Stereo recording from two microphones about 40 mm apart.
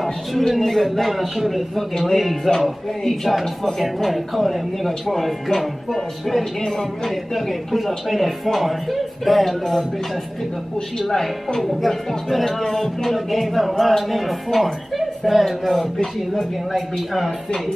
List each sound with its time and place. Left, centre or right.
0.0 s speech: centre
7.3 s speech: centre
11.1 s speech: centre